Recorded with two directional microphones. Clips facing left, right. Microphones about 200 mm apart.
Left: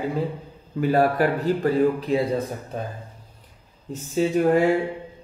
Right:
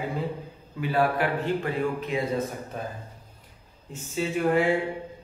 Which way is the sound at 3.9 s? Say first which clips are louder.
Left 7 dB; 40° left (ahead or behind).